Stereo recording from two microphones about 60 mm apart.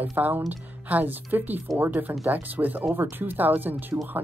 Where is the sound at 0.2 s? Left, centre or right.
Right.